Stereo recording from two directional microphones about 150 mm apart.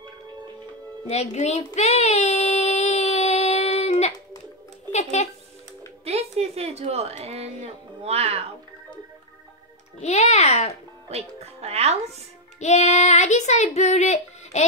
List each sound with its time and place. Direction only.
1.0 s child singing: 45° left (ahead or behind)
5.2 s a child's voice: 50° left (ahead or behind)
6.0 s a woman's voice: 45° right (ahead or behind)
9.9 s speech: 50° left (ahead or behind)
11.1 s speech: 45° right (ahead or behind)
12.5 s speech: 50° left (ahead or behind)